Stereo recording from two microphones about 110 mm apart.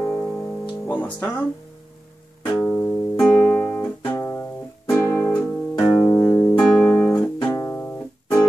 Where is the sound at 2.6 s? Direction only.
15° left (ahead or behind).